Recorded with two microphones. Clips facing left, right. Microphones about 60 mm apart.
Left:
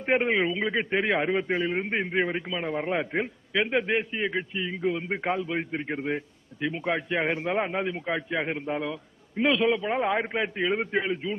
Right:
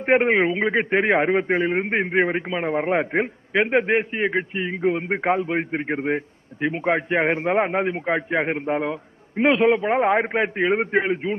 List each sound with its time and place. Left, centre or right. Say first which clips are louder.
0.1 s a man's voice: right 6 dB; right